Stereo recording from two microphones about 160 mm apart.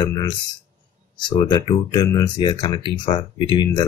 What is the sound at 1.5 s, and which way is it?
Speech, 25° left (ahead or behind).